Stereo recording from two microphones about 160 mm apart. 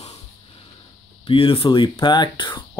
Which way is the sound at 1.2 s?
35° left (ahead or behind).